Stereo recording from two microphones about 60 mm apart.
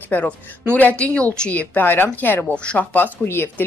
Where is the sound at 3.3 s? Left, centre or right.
Left.